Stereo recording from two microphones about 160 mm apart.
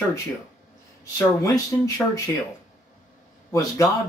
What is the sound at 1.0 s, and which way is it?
Speech, 20° left (ahead or behind).